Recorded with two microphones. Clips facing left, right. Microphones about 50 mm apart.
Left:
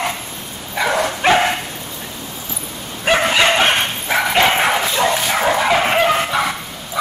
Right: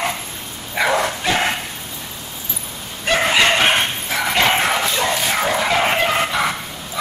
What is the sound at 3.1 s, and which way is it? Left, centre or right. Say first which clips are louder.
Bow-wow: left 3 dB; centre.